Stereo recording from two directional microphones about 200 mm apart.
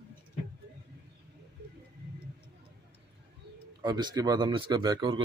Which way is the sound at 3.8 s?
20° right (ahead or behind).